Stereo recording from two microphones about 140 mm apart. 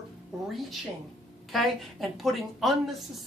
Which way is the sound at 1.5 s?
Centre (ahead or behind).